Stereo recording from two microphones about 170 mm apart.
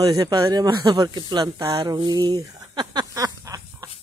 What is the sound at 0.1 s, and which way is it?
Speech, 20° right (ahead or behind).